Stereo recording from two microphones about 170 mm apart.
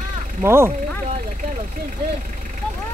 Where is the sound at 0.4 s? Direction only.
15° right (ahead or behind).